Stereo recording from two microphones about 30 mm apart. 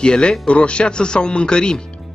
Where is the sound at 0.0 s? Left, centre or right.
Left.